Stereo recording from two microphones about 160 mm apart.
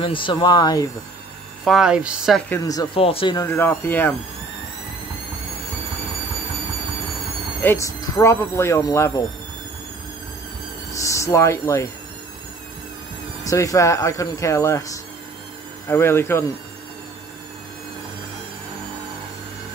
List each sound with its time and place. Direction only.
0.0 s speech: 30° left (ahead or behind)
1.6 s a woman's voice: centre (ahead or behind)
2.5 s speech: 20° left (ahead or behind)
3.0 s speech: 35° left (ahead or behind)
3.3 s speech: 15° left (ahead or behind)
7.6 s speech: 20° left (ahead or behind)
10.9 s speech: 20° left (ahead or behind)
13.4 s speech: 20° left (ahead or behind)